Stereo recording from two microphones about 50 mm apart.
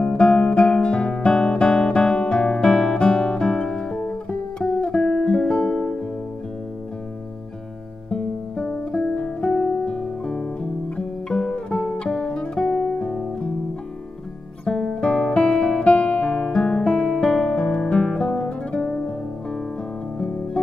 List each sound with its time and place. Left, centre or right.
0.0 s guitar: centre
8.1 s guitar: centre
12.1 s music: centre
12.4 s guitar: centre
14.6 s guitar: centre
20.6 s music: centre